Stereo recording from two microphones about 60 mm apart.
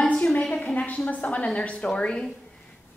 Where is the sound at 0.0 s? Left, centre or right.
Centre.